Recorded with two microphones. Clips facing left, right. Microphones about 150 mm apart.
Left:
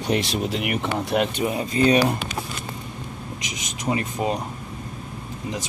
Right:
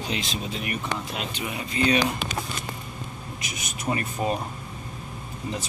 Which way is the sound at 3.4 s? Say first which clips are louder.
Left 2 dB; 90° left.